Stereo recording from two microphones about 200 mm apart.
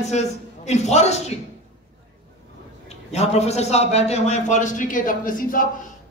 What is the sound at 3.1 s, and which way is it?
A woman's voice, 35° left (ahead or behind).